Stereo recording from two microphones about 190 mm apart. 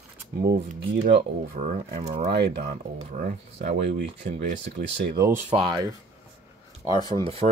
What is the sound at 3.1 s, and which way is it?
Speech, 45° right (ahead or behind).